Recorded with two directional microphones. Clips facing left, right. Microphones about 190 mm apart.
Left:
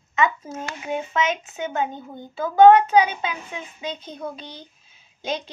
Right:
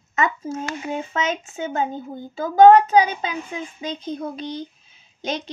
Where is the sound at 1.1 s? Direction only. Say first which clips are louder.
Left 1 dB; 40° right (ahead or behind).